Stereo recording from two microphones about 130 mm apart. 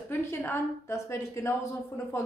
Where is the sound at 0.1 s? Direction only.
15° left (ahead or behind).